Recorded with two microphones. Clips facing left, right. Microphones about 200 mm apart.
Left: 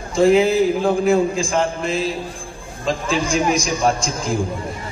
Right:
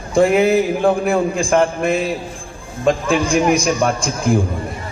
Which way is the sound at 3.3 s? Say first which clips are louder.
Right 5 dB; 60° right (ahead or behind).